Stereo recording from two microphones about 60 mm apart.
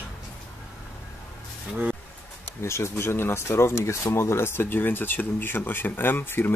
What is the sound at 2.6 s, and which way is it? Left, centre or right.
Speech, left.